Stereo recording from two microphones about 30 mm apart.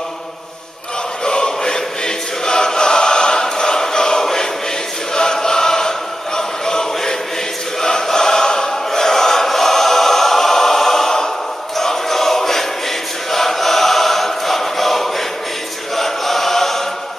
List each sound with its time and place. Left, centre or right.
1.2 s choir: left
5.1 s chant: left
7.8 s choir: centre
11.7 s music: centre
13.3 s choir: centre
16.0 s chant: centre